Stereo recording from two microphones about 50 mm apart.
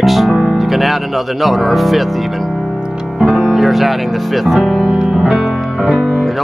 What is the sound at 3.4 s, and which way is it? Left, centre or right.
Speech, centre.